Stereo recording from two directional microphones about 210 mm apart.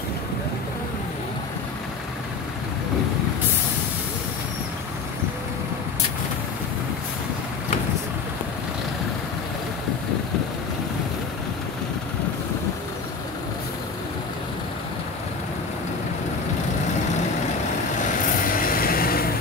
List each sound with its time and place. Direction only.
18.2 s vehicle: 40° left (ahead or behind)